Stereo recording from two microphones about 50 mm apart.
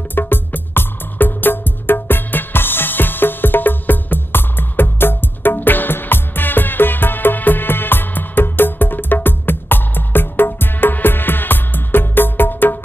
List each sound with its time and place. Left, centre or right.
0.1 s music: left